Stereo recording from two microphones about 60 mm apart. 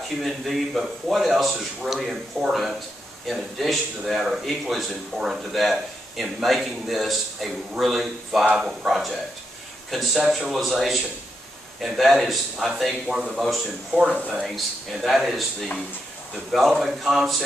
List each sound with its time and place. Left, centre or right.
0.2 s speech: centre
13.9 s speech: centre